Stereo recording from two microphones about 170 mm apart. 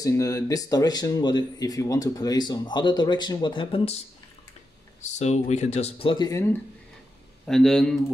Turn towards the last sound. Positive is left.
turn(degrees=5)  # may be behind; listen again after turning